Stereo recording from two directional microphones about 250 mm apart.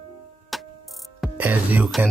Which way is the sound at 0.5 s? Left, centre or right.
Centre.